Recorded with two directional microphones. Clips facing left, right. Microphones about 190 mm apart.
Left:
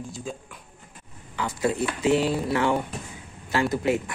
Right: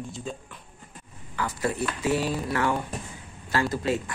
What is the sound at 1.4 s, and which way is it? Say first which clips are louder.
Speech: left 3 dB; 20° left (ahead or behind).